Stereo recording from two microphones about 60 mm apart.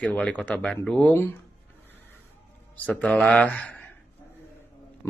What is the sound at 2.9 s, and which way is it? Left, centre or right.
Speech, centre.